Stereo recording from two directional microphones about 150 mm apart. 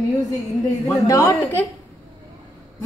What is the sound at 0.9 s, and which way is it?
Speech, 20° left (ahead or behind).